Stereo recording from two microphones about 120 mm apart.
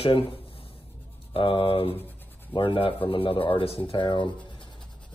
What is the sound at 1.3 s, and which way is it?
Speech, 45° left (ahead or behind).